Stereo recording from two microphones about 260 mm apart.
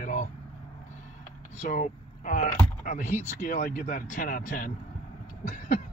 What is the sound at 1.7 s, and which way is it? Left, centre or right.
Speech, left.